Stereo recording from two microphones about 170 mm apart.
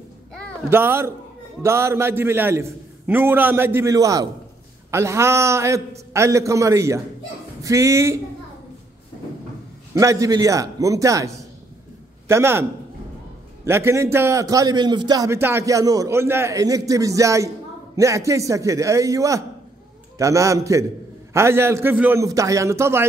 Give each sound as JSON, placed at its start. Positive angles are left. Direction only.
{"t": 0.7, "sound": "a man's voice", "side_deg": -15}
{"t": 9.9, "sound": "a man's voice", "side_deg": -20}
{"t": 13.7, "sound": "a man's voice", "side_deg": -15}